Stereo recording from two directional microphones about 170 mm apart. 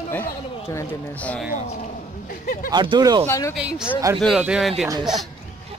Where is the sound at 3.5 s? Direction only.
5° right (ahead or behind).